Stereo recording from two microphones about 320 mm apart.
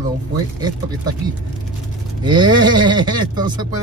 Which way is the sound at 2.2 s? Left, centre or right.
Centre.